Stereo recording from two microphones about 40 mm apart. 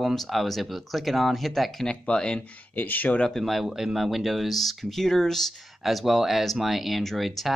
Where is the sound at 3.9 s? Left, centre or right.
Centre.